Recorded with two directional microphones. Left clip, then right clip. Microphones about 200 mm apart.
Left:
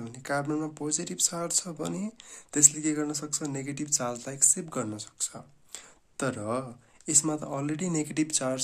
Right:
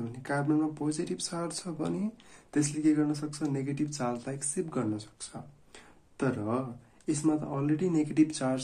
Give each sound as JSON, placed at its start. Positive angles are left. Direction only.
{"t": 0.0, "sound": "speech", "side_deg": 25}